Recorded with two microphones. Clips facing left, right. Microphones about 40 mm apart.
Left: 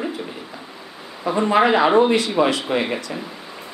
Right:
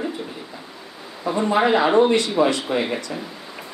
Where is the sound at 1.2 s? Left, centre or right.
Centre.